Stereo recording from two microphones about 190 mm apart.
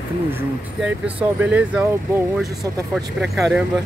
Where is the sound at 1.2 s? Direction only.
10° right (ahead or behind).